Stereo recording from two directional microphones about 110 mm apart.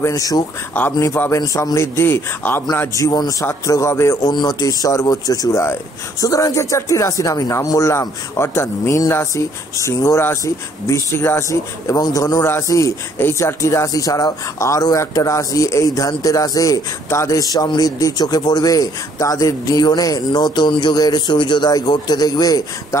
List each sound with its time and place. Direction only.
0.0 s a man's voice: 30° left (ahead or behind)
3.0 s a man's voice: 30° left (ahead or behind)